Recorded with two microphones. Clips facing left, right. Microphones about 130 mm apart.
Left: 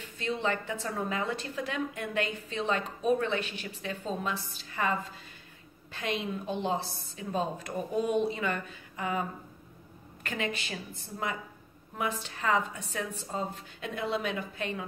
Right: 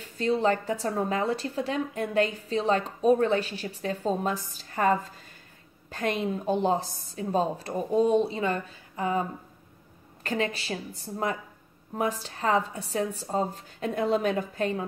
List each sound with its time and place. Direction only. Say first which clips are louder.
0.0 s a woman's voice: right 7 dB; 35° right (ahead or behind)